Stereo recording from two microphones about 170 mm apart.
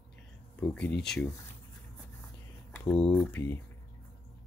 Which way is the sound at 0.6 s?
10° left (ahead or behind).